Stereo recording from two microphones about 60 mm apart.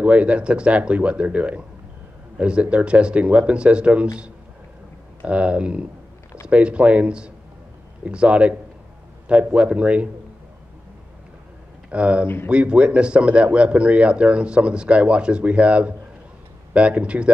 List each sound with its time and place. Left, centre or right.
0.0 s a man's voice: right
5.2 s a man's voice: right
11.9 s a man's voice: centre